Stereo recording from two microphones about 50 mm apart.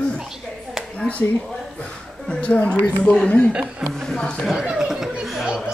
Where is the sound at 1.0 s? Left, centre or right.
Left.